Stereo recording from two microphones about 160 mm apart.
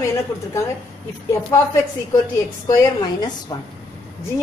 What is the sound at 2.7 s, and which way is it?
Speech, 25° left (ahead or behind).